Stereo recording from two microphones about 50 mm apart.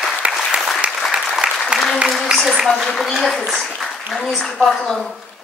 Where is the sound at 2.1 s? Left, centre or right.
Centre.